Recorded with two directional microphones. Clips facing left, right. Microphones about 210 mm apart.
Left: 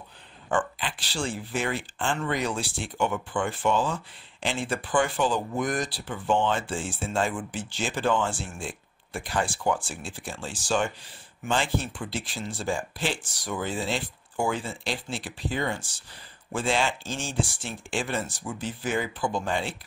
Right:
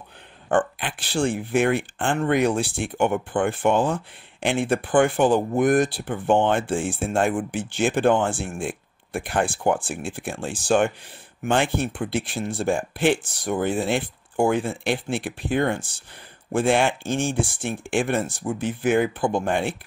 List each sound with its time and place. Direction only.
0.5 s speech: 55° right (ahead or behind)